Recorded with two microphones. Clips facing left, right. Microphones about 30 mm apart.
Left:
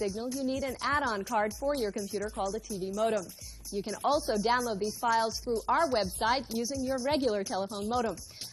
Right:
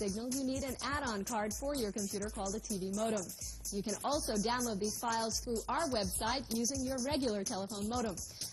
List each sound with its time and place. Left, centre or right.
0.0 s a woman's voice: left